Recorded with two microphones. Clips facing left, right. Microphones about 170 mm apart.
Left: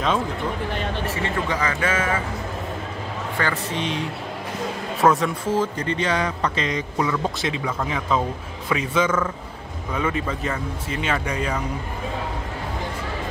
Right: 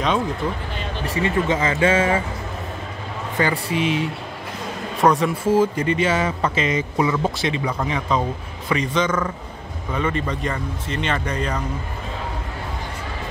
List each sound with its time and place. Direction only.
1.0 s speech: 20° right (ahead or behind)
3.3 s a man's voice: 10° right (ahead or behind); by 11.6 s 10° left (ahead or behind)